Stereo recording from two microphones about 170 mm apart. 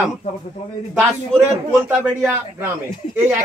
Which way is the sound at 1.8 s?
15° right (ahead or behind).